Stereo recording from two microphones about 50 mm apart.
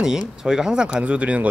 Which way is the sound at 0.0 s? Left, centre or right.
Centre.